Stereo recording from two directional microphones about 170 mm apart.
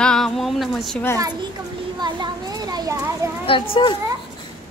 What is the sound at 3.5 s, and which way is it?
Speech, 30° left (ahead or behind).